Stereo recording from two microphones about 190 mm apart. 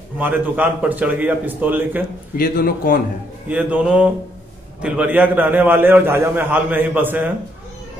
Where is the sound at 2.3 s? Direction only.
50° left (ahead or behind).